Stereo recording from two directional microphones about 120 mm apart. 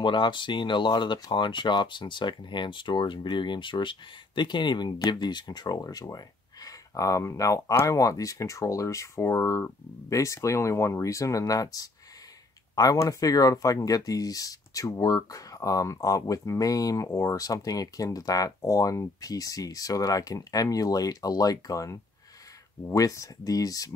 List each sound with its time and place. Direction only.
0.0 s speech: 40° left (ahead or behind)